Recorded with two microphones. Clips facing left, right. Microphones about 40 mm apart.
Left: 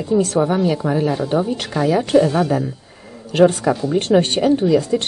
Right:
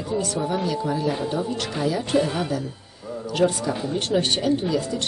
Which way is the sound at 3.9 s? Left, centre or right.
Left.